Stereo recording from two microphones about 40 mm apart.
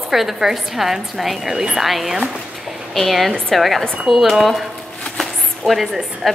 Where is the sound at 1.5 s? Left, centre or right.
Centre.